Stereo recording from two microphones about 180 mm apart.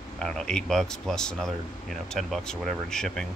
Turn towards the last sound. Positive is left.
turn(degrees=5)  # may be behind; listen again after turning